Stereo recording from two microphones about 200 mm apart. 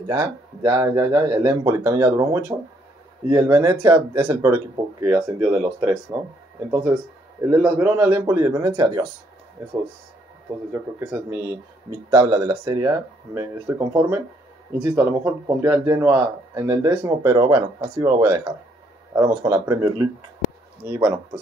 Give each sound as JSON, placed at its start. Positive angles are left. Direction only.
{"t": 0.1, "sound": "speech", "side_deg": -20}
{"t": 7.4, "sound": "speech", "side_deg": -10}
{"t": 10.7, "sound": "speech", "side_deg": -10}